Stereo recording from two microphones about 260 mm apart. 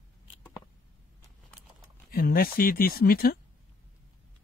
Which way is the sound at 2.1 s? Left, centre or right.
Left.